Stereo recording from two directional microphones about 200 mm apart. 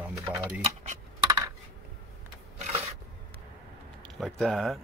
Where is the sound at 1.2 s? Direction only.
20° right (ahead or behind).